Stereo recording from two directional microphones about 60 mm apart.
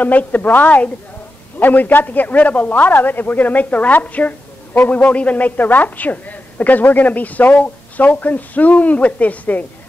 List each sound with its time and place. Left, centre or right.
0.0 s a man's voice: left